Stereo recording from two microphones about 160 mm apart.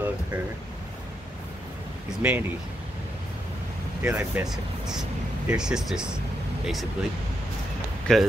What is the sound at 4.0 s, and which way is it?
Speech, 10° right (ahead or behind).